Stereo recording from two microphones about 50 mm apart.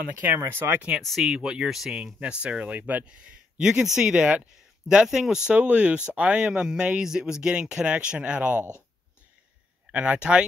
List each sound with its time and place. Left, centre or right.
0.0 s speech: right
1.2 s speech: centre
1.7 s speech: centre
2.1 s speech: centre
2.7 s speech: right
3.6 s speech: centre
5.6 s speech: right
9.9 s speech: right